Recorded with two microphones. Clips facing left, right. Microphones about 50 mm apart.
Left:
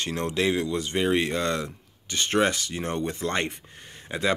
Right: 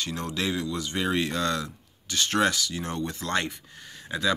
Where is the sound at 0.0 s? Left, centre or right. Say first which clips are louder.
Left 4 dB; left.